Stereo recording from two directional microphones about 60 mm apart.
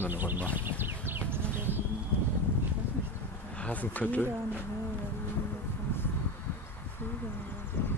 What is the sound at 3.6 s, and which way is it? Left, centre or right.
Speech, left.